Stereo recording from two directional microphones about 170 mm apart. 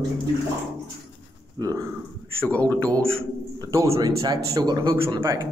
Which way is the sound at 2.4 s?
10° left (ahead or behind).